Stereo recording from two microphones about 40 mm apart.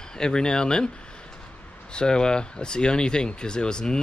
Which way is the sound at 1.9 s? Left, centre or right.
Left.